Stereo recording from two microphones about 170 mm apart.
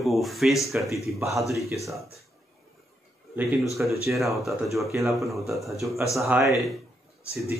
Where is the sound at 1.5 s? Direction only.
20° right (ahead or behind).